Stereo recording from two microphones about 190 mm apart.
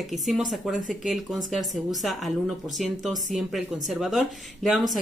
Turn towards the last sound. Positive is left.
turn(degrees=0)  # may be behind; listen again after turning